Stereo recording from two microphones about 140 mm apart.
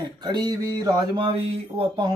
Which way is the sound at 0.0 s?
30° right (ahead or behind).